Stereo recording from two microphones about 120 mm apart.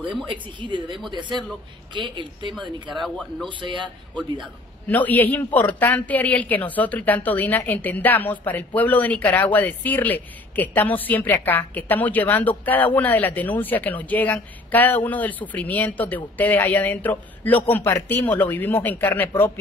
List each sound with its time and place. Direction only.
0.2 s a woman's voice: 40° right (ahead or behind)
2.5 s speech: centre (ahead or behind)
3.4 s a woman's voice: 40° right (ahead or behind)
4.8 s a man's voice: 15° left (ahead or behind)